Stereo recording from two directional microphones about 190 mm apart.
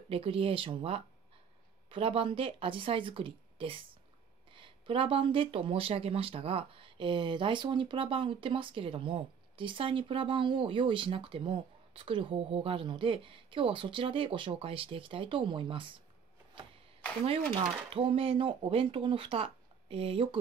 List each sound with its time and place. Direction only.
0.1 s speech: 30° right (ahead or behind)
17.2 s speech: 25° right (ahead or behind)